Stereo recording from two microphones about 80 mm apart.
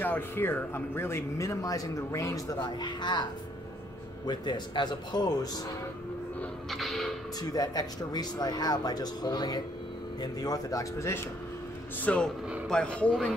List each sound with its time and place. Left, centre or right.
0.0 s speech: left
4.3 s speech: left
6.7 s music: centre
7.5 s speech: left
12.0 s a man's voice: centre